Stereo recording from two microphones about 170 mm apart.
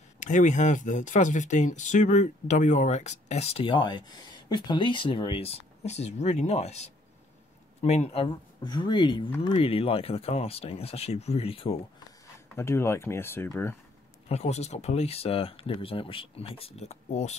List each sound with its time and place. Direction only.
0.2 s speech: 45° left (ahead or behind)
12.5 s speech: 15° left (ahead or behind)
14.3 s speech: 40° left (ahead or behind)